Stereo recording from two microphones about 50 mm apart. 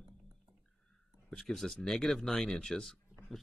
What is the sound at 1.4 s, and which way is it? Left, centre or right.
Speech, centre.